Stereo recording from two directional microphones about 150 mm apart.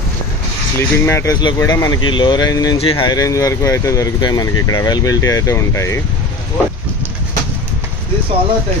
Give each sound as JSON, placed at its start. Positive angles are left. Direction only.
{"t": 0.7, "sound": "speech", "side_deg": 20}
{"t": 2.8, "sound": "speech", "side_deg": 35}
{"t": 3.2, "sound": "speech", "side_deg": 20}